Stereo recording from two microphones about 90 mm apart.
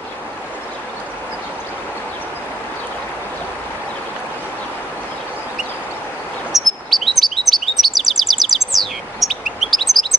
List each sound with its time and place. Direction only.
6.5 s chirp: centre (ahead or behind)